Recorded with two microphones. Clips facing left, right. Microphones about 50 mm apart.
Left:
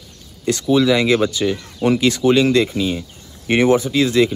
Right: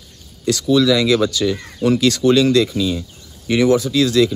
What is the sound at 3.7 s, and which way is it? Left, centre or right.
Speech, left.